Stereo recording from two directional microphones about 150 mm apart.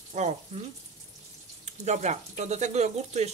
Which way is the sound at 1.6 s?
50° right (ahead or behind).